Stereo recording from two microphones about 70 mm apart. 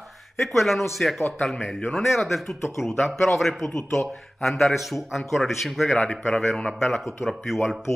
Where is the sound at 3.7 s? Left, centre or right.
Left.